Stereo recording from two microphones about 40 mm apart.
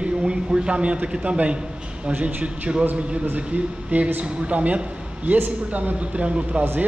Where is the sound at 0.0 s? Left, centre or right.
Right.